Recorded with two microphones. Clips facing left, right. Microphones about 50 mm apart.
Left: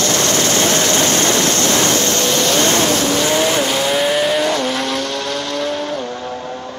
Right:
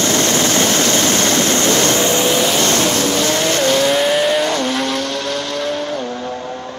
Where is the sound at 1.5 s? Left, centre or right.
Centre.